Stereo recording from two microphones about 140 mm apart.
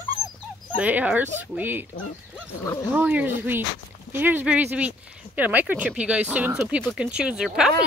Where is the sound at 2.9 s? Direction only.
10° right (ahead or behind).